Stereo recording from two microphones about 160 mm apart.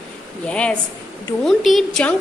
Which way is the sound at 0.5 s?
5° left (ahead or behind).